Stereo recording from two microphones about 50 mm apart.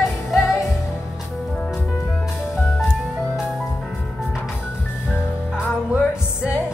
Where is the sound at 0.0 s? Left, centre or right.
Centre.